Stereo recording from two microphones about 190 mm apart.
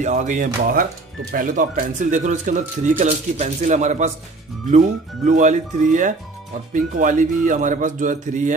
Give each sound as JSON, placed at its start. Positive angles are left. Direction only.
{"t": 0.0, "sound": "speech", "side_deg": -40}